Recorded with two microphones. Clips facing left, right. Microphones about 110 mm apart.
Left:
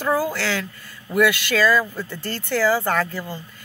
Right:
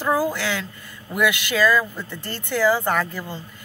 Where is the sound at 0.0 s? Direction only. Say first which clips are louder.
Even; 15° right (ahead or behind).